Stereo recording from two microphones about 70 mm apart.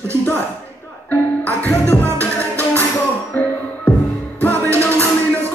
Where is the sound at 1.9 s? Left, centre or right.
Left.